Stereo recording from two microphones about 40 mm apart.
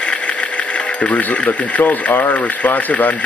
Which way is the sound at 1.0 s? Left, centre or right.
Left.